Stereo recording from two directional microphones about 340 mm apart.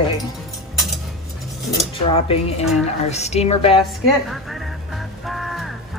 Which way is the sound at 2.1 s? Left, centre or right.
Centre.